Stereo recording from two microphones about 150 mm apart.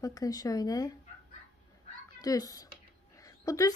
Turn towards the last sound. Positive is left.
turn(degrees=20)  # may be behind; listen again after turning